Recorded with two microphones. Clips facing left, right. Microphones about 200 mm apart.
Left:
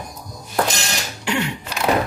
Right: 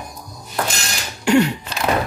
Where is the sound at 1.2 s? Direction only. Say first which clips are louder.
Right 9 dB; 45° right (ahead or behind).